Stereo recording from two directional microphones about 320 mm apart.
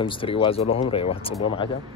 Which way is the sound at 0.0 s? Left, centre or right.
Centre.